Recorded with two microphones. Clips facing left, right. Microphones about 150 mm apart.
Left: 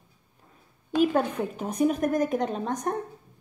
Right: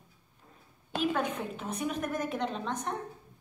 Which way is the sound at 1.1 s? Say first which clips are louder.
Left 5 dB; 35° left (ahead or behind).